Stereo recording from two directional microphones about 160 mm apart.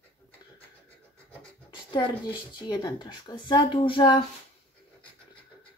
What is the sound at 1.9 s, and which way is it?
Speech, 30° left (ahead or behind).